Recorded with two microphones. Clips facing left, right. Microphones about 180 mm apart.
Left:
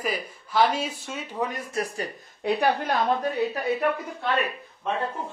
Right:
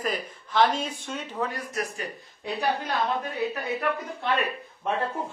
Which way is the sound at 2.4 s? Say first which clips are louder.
Left 5 dB; 65° left (ahead or behind).